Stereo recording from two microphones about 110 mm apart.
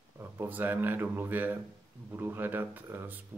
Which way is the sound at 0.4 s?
15° right (ahead or behind).